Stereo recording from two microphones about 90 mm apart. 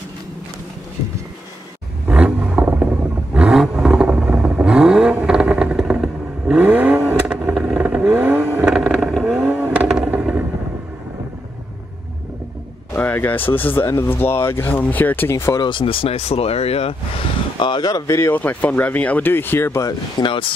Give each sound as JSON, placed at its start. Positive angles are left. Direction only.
{"t": 2.0, "sound": "roar", "side_deg": -15}
{"t": 5.8, "sound": "vehicle", "side_deg": -5}
{"t": 6.6, "sound": "vehicle", "side_deg": -20}
{"t": 8.6, "sound": "vehicle", "side_deg": -5}
{"t": 12.9, "sound": "speech", "side_deg": 20}
{"t": 15.5, "sound": "speech", "side_deg": 60}
{"t": 17.6, "sound": "speech", "side_deg": 60}
{"t": 18.0, "sound": "speech", "side_deg": 30}
{"t": 20.2, "sound": "speech", "side_deg": 70}